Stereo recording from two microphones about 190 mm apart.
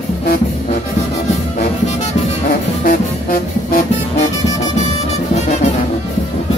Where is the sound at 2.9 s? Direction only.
45° left (ahead or behind).